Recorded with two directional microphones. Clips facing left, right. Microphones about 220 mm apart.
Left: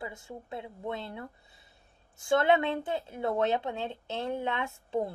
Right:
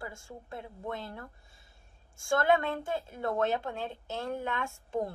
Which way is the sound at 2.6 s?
25° left (ahead or behind).